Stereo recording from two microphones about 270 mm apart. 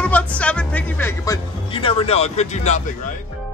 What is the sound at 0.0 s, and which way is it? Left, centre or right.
Music, centre.